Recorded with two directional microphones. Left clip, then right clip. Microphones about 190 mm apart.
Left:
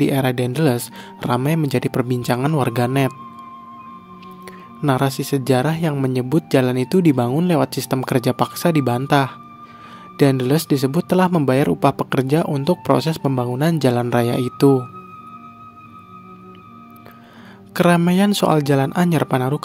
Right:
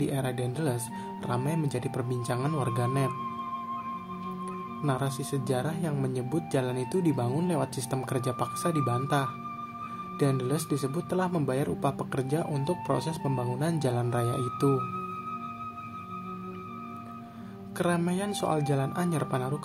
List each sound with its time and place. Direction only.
0.0 s speech: 50° left (ahead or behind)
4.8 s speech: 50° left (ahead or behind)
17.7 s speech: 50° left (ahead or behind)